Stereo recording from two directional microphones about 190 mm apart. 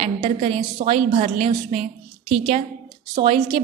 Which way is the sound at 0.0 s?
30° right (ahead or behind).